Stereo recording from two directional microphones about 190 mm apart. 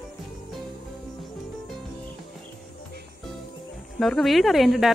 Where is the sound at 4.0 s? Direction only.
Centre (ahead or behind).